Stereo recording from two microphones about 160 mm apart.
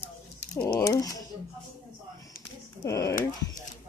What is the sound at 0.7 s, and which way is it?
Mechanisms, 20° left (ahead or behind).